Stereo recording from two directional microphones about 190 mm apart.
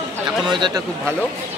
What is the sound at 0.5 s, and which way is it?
Speech, 25° right (ahead or behind).